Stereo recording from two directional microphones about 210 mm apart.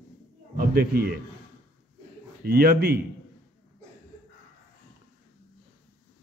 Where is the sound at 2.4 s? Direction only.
45° right (ahead or behind).